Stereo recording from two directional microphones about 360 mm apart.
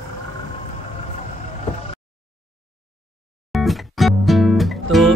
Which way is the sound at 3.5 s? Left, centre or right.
Centre.